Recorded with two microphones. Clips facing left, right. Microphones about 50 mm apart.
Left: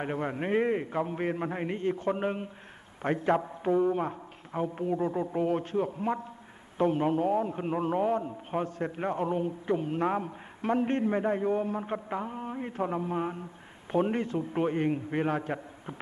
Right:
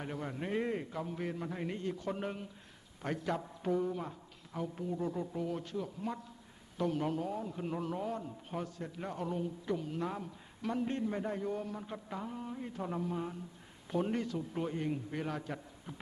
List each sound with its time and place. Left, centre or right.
0.0 s a man's voice: left